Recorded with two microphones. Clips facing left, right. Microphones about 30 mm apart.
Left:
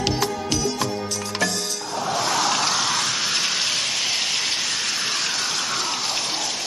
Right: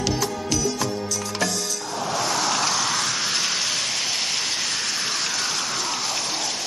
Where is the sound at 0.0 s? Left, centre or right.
Left.